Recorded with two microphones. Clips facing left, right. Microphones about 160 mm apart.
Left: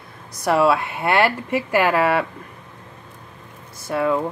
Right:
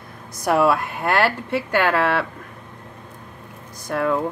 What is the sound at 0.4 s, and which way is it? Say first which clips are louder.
Speech: left 1 dB; centre (ahead or behind).